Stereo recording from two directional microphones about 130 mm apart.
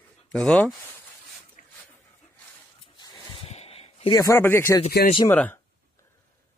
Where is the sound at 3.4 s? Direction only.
50° left (ahead or behind).